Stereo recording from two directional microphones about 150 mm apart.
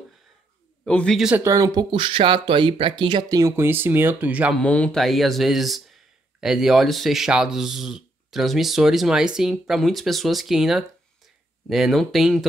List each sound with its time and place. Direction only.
0.8 s speech: 5° left (ahead or behind)
1.3 s speech: 20° right (ahead or behind)
4.6 s speech: 10° left (ahead or behind)